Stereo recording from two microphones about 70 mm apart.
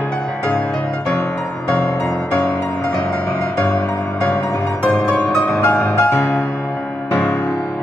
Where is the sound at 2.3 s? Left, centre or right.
Centre.